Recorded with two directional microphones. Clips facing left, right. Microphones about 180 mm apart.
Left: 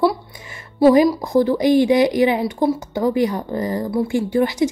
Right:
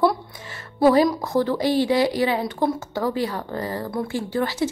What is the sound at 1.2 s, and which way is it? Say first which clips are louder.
A woman's voice: left 5 dB; 15° left (ahead or behind).